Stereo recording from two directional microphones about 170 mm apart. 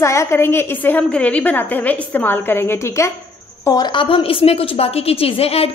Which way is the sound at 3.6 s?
25° left (ahead or behind).